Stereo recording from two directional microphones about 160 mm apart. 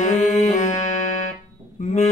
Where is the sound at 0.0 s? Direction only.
50° left (ahead or behind).